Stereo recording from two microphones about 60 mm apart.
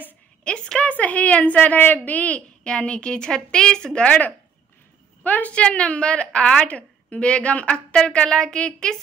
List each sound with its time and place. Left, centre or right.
0.4 s a woman's voice: centre
5.5 s a woman's voice: centre